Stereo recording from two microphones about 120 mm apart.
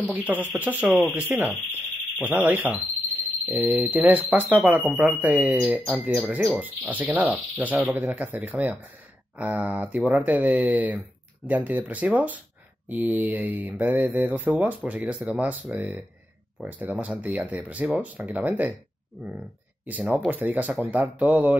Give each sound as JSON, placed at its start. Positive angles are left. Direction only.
{"t": 0.0, "sound": "speech", "side_deg": -10}
{"t": 19.9, "sound": "speech", "side_deg": -10}